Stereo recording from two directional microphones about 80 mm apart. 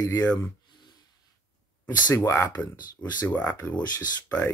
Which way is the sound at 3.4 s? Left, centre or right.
Left.